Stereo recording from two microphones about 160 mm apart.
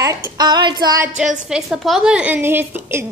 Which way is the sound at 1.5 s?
Centre (ahead or behind).